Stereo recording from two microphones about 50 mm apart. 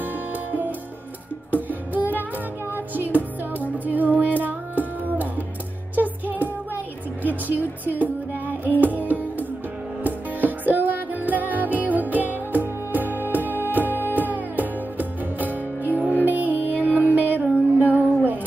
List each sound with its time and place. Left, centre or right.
0.0 s music: right